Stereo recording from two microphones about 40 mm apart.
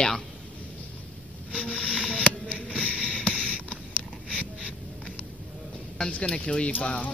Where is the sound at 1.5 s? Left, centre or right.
Left.